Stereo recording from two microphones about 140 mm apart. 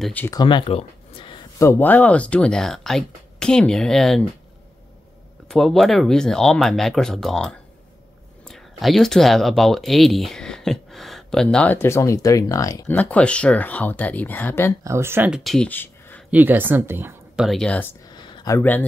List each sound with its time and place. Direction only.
0.3 s speech: 35° left (ahead or behind)
1.6 s speech: 15° left (ahead or behind)
5.5 s speech: centre (ahead or behind); by 12.9 s 25° left (ahead or behind)
12.9 s speech: 10° left (ahead or behind)
14.8 s speech: 20° right (ahead or behind); by 16.3 s 15° left (ahead or behind)
16.3 s a woman's voice: 15° right (ahead or behind)
17.4 s speech: centre (ahead or behind)
18.0 s a sound: 30° left (ahead or behind)
18.6 s speech: 10° left (ahead or behind)